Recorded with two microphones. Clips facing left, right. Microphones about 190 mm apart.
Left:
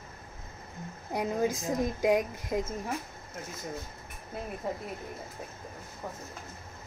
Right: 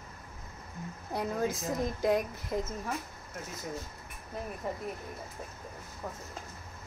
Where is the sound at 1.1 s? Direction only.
15° left (ahead or behind).